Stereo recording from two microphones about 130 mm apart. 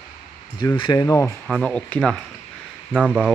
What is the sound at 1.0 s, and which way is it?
Speech, 25° left (ahead or behind).